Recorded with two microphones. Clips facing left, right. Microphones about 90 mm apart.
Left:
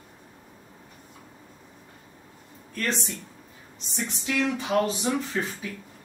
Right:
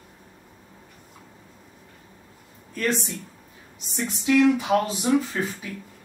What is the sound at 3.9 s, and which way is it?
Speech, 5° right (ahead or behind).